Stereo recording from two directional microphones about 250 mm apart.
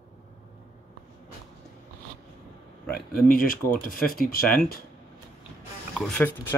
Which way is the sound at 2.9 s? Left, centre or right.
Left.